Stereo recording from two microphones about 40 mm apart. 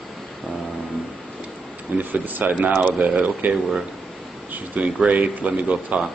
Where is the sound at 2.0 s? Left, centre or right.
Right.